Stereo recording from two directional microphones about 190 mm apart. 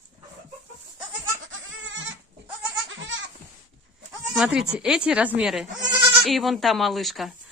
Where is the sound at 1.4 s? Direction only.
85° right.